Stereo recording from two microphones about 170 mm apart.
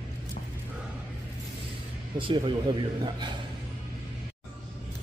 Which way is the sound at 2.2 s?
30° right (ahead or behind).